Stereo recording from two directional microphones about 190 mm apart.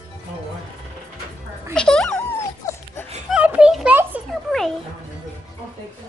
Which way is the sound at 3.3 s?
5° right (ahead or behind).